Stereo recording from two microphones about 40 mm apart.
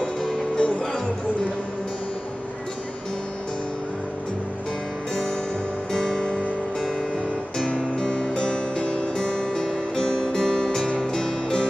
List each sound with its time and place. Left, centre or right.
0.6 s music: left
5.9 s music: centre
7.5 s music: centre